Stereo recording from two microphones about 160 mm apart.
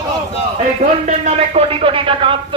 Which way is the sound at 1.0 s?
45° right (ahead or behind).